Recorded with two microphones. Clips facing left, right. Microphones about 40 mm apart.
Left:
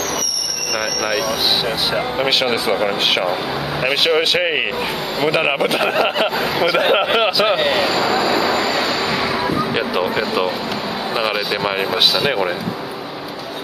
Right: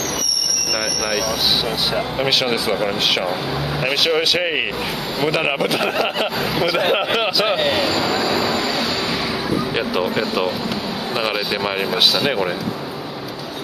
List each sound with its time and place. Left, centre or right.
2.0 s speech: centre
9.8 s speech: centre